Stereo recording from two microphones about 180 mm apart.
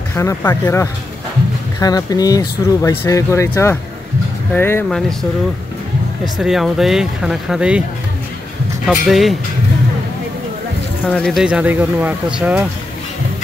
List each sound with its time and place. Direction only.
0.1 s speech: 15° left (ahead or behind)
6.4 s speech: centre (ahead or behind)
8.8 s speech: centre (ahead or behind)
11.1 s speech: 5° left (ahead or behind)